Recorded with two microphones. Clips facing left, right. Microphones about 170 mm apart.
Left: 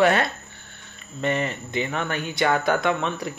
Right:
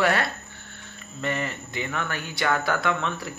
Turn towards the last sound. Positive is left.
turn(degrees=20)  # may be behind; listen again after turning